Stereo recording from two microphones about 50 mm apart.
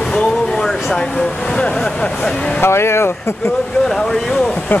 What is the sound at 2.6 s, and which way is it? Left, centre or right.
Speech, left.